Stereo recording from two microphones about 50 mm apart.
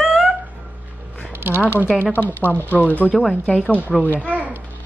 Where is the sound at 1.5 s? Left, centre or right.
Left.